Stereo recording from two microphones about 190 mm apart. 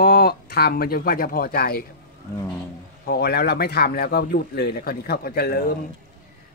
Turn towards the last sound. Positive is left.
turn(degrees=55)  # may be behind; listen again after turning